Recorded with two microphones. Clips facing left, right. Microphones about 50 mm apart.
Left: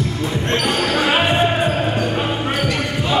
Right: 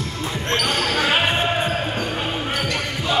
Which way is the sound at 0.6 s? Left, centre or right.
Centre.